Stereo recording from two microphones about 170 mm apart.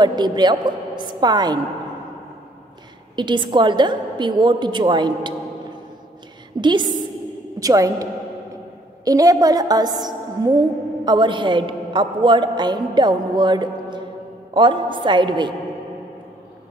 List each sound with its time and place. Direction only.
0.0 s a woman's voice: 25° right (ahead or behind)
3.2 s a woman's voice: 25° right (ahead or behind)
6.6 s a woman's voice: 25° right (ahead or behind)